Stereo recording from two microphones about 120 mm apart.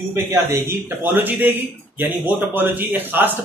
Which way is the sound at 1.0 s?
15° right (ahead or behind).